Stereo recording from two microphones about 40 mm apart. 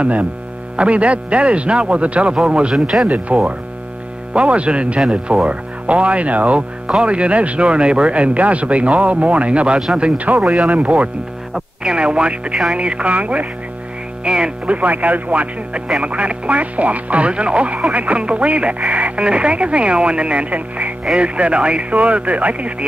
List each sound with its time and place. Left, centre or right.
0.0 s speech: right
2.7 s speech: centre
3.3 s speech: right
10.4 s speech: centre
10.7 s speech: right
11.5 s speech: right
14.2 s speech: centre
14.7 s speech: right